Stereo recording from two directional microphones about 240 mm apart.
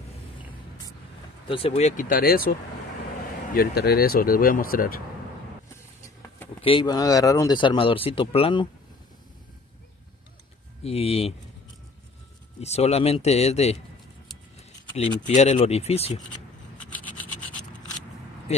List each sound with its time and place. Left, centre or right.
1.5 s speech: left
3.5 s speech: left
6.6 s speech: left
10.8 s speech: left
12.5 s speech: left
15.0 s speech: left
16.9 s sawing: centre
18.5 s vehicle: left